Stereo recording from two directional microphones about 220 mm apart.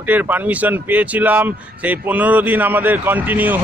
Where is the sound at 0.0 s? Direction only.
10° right (ahead or behind).